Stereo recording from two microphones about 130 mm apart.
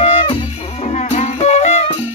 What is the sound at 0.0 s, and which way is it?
Music, 45° left (ahead or behind).